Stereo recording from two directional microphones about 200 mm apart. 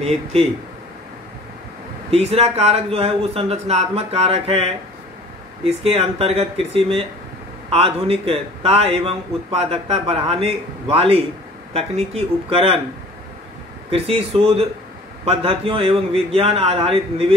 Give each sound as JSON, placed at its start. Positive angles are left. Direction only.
{"t": 0.0, "sound": "a man's voice", "side_deg": -30}
{"t": 2.0, "sound": "a man's voice", "side_deg": -30}
{"t": 13.8, "sound": "a man's voice", "side_deg": -30}